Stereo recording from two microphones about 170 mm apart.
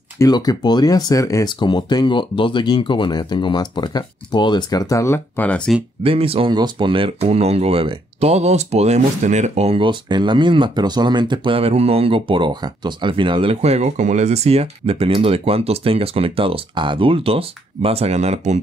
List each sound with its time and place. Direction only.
0.2 s speech: 25° left (ahead or behind)
6.0 s speech: 35° right (ahead or behind)